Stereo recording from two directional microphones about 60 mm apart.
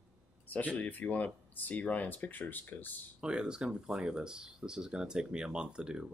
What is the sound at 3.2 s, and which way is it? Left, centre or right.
Speech, centre.